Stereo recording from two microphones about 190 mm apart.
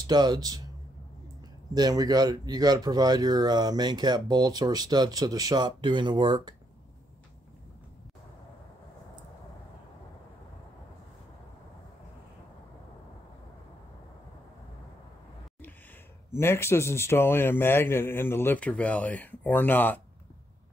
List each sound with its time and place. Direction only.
0.0 s speech: 20° right (ahead or behind)
1.7 s speech: 20° right (ahead or behind)
16.3 s a man's voice: 15° left (ahead or behind)